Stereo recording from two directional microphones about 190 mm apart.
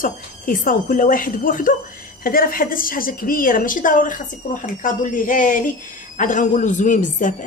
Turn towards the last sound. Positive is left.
turn(degrees=40)  # may be behind; listen again after turning